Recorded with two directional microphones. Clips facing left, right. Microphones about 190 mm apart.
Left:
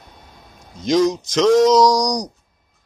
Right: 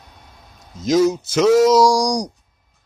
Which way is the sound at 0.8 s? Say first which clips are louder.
Right 1 dB; 5° right (ahead or behind).